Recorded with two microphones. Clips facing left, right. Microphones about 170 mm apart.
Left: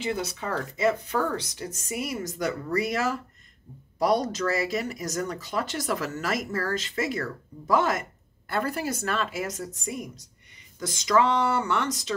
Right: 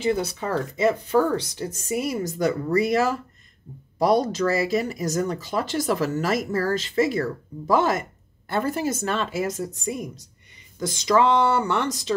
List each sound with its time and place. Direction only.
0.0 s speech: 35° right (ahead or behind)